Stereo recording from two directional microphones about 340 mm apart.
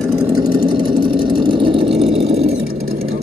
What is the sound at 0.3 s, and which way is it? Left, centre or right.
Vehicle, centre.